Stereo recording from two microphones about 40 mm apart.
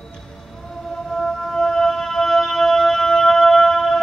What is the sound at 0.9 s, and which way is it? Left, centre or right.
Music, centre.